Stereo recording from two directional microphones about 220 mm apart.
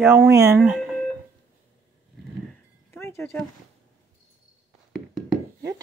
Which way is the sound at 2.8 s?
10° left (ahead or behind).